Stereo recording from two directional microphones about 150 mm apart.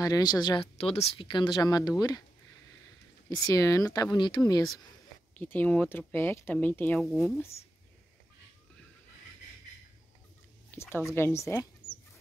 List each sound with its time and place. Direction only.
0.0 s speech: 25° left (ahead or behind)
0.7 s speech: 40° left (ahead or behind); by 2.2 s 25° left (ahead or behind)
3.3 s speech: 25° left (ahead or behind)
5.3 s speech: 10° left (ahead or behind)
10.7 s a sound: 15° left (ahead or behind)
11.1 s speech: 15° left (ahead or behind)